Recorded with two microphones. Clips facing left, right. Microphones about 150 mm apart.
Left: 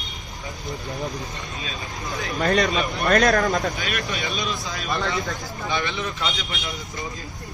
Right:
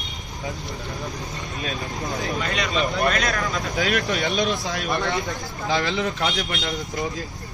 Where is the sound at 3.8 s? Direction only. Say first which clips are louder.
Right 6 dB; 90° right.